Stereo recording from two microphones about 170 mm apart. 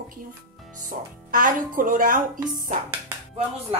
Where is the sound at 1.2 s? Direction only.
55° right (ahead or behind).